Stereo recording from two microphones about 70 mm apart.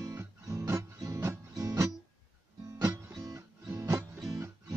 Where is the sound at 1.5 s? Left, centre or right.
Right.